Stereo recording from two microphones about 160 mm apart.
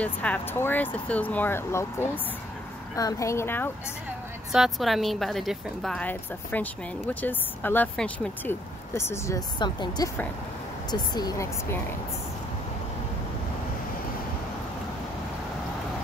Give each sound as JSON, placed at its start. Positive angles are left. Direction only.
{"t": 0.0, "sound": "speech", "side_deg": 10}
{"t": 4.5, "sound": "speech", "side_deg": 0}